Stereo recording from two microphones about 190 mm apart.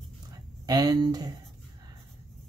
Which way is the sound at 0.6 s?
20° right (ahead or behind).